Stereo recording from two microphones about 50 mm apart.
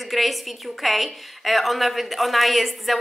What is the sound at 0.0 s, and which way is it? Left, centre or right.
A woman's voice, centre.